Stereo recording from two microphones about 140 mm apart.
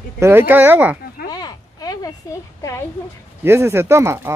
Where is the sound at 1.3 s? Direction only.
30° left (ahead or behind).